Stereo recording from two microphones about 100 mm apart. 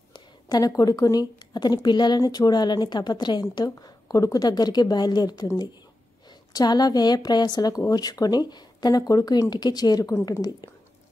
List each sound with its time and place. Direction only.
0.1 s a woman's voice: 40° left (ahead or behind)
6.5 s speech: 45° left (ahead or behind)